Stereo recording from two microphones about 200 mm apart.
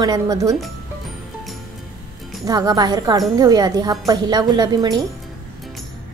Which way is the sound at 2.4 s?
20° right (ahead or behind).